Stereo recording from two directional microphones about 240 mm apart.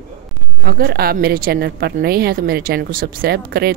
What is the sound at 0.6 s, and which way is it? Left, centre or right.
A woman's voice, right.